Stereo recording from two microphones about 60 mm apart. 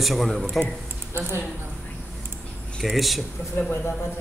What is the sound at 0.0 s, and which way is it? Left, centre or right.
Speech, centre.